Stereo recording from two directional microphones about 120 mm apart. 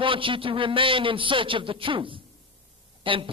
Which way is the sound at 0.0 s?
45° right (ahead or behind).